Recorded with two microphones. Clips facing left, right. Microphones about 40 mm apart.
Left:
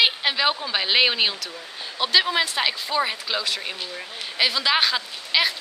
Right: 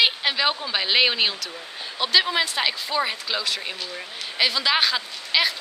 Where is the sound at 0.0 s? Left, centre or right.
Centre.